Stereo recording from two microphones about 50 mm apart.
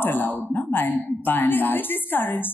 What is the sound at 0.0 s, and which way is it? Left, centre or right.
A woman's voice, left.